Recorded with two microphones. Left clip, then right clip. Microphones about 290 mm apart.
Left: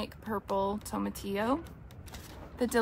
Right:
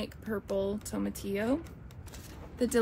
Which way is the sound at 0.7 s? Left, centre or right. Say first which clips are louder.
Left 1 dB; centre.